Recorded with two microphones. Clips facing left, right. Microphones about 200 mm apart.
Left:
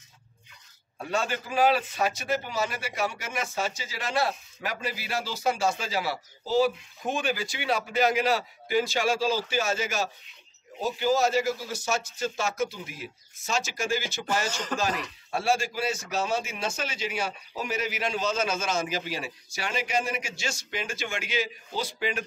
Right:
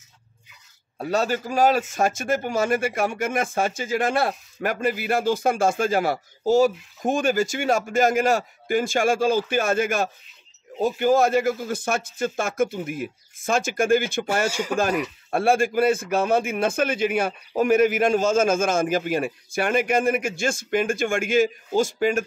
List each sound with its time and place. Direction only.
0.9 s a man's voice: 40° right (ahead or behind); by 14.2 s 55° right (ahead or behind)
14.5 s speech: 10° right (ahead or behind)
15.3 s a man's voice: 55° right (ahead or behind)